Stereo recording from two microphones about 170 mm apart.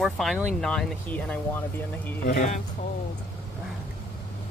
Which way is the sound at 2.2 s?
50° left (ahead or behind).